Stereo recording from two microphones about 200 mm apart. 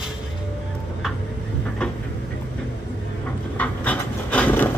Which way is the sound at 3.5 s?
5° left (ahead or behind).